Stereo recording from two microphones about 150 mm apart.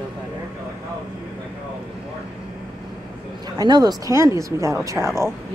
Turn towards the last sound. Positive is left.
turn(degrees=-15)  # may be behind; listen again after turning